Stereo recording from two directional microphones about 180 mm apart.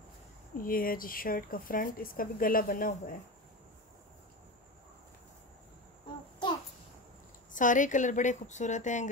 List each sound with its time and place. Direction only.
0.6 s speech: 50° left (ahead or behind)
7.5 s speech: 45° left (ahead or behind)